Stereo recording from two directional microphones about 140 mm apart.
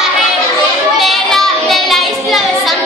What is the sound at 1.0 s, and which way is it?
Child singing, centre (ahead or behind).